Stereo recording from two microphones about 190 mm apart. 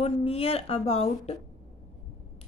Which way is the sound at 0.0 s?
30° left (ahead or behind).